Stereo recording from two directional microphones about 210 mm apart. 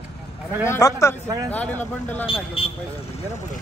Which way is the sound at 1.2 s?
15° right (ahead or behind).